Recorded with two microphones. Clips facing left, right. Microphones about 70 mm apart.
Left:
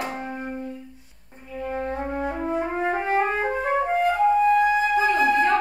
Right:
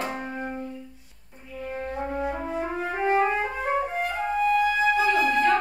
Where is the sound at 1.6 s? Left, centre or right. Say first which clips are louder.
Left 3 dB; left.